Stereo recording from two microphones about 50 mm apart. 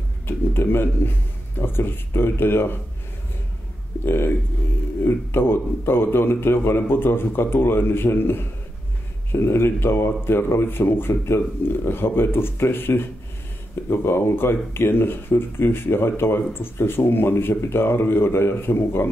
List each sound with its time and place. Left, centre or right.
0.3 s a man's voice: left
4.0 s speech: left